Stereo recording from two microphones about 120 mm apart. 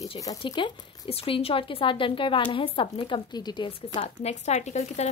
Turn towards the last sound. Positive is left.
turn(degrees=70)  # may be behind; listen again after turning